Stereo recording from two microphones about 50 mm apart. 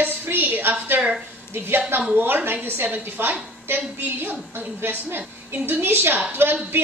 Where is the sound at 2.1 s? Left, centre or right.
Right.